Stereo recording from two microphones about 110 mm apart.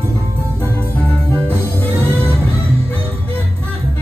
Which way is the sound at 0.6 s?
20° left (ahead or behind).